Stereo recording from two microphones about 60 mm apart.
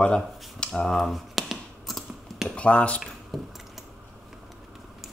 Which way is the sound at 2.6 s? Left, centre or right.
Left.